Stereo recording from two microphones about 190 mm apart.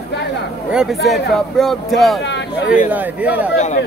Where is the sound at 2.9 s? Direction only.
10° right (ahead or behind).